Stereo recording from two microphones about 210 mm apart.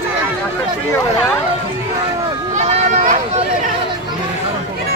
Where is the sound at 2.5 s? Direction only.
35° right (ahead or behind).